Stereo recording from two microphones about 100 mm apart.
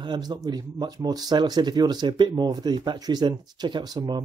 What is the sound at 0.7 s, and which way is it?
Speech, 45° right (ahead or behind).